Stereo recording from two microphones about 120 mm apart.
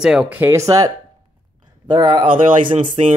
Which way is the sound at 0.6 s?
25° right (ahead or behind).